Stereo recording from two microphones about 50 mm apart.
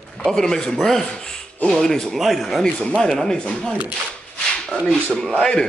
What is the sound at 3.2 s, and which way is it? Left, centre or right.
Speech, centre.